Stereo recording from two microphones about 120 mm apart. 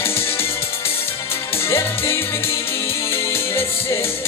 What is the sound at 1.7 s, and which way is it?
Music, 20° left (ahead or behind).